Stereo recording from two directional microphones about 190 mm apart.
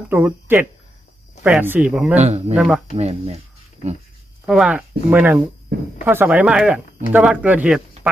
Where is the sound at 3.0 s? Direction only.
35° right (ahead or behind).